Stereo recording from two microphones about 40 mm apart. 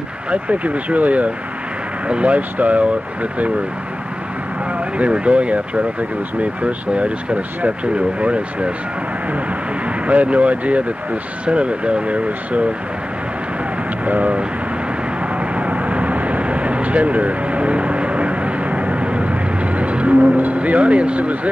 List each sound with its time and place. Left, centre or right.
0.3 s speech: right
4.7 s speech: right
9.8 s speech: right
14.0 s speech: right
15.3 s vehicle: right